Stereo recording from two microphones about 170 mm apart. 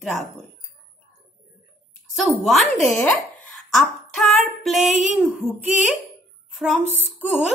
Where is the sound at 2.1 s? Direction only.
Centre (ahead or behind).